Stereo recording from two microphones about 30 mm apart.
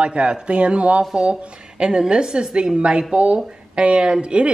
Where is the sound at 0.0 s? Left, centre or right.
Right.